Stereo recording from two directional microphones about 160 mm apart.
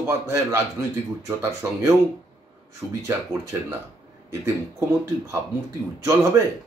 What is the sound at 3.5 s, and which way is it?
A man's voice, 15° right (ahead or behind).